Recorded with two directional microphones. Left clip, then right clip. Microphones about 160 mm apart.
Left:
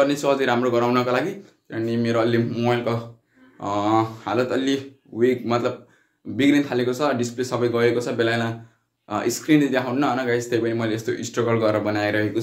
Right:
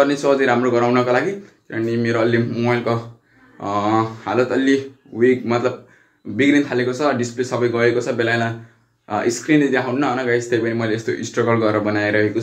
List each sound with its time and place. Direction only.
0.0 s speech: 15° left (ahead or behind)